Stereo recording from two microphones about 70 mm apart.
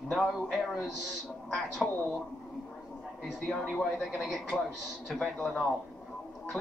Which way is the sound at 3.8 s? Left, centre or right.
Centre.